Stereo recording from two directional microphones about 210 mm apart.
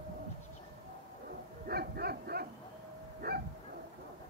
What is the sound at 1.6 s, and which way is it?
Bow-wow, 45° right (ahead or behind).